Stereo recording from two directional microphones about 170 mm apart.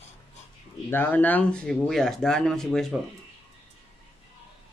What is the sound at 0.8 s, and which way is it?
Speech, 10° left (ahead or behind).